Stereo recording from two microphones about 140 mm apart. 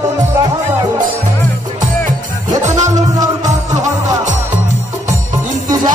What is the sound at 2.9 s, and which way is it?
Music, 25° right (ahead or behind).